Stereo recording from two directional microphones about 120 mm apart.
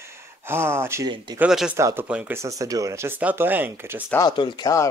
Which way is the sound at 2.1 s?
10° right (ahead or behind).